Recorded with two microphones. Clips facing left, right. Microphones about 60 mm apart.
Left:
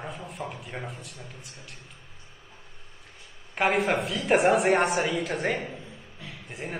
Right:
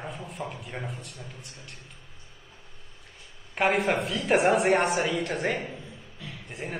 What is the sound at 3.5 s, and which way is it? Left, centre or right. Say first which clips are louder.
A woman's voice: even; centre.